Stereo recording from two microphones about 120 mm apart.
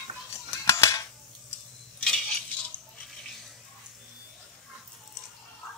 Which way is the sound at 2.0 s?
5° left (ahead or behind).